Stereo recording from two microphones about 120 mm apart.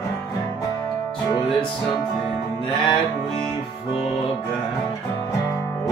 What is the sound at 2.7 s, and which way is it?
Music, 40° left (ahead or behind).